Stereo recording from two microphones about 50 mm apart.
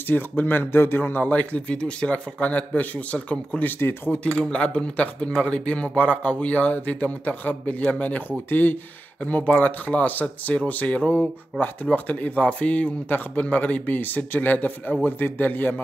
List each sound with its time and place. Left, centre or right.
0.0 s speech: left
1.2 s speech: left
3.6 s speech: left
4.2 s speech: left
9.2 s speech: left